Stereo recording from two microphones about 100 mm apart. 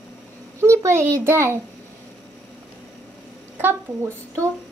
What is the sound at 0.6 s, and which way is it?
A child's voice, 30° right (ahead or behind).